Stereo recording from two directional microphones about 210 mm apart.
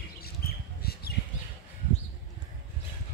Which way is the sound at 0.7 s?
50° left (ahead or behind).